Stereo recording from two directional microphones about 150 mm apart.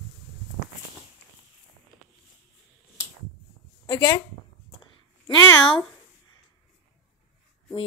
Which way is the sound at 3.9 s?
25° left (ahead or behind).